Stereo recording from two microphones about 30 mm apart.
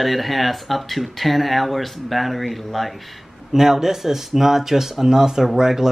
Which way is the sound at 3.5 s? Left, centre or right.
Centre.